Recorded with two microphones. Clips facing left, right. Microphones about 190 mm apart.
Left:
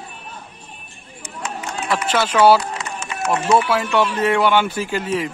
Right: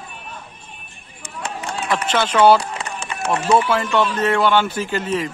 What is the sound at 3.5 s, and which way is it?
Speech, 5° left (ahead or behind).